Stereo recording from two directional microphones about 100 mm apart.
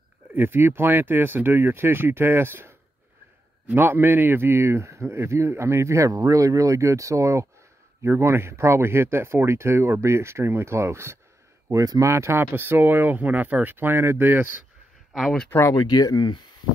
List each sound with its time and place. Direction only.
0.3 s a man's voice: 20° right (ahead or behind)
15.1 s speech: 5° left (ahead or behind)
15.7 s speech: 45° left (ahead or behind)